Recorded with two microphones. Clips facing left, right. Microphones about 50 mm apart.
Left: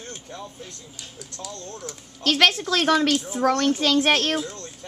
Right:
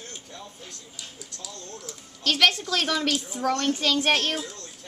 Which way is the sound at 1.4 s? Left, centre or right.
Left.